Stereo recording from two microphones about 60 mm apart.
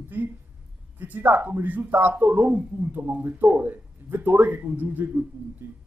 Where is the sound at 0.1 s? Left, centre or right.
Right.